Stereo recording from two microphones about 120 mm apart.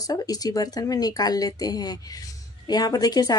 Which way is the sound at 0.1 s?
30° left (ahead or behind).